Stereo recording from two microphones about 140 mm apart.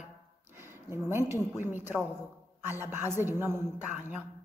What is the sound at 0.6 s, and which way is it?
A woman's voice, 15° right (ahead or behind).